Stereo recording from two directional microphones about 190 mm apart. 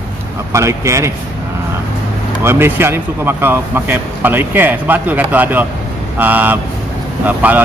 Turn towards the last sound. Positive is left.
turn(degrees=-10)  # may be behind; listen again after turning